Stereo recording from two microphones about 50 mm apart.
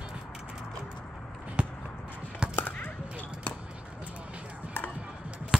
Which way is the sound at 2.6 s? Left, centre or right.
Left.